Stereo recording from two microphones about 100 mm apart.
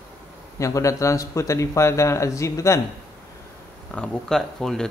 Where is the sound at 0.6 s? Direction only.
30° left (ahead or behind).